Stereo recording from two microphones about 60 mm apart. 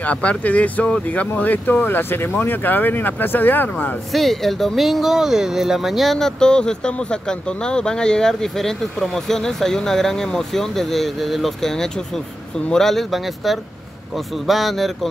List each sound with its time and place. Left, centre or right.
0.0 s speech: left
4.1 s speech: centre